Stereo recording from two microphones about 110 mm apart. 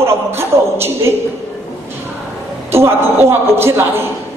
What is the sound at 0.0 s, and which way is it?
Speech, 20° right (ahead or behind).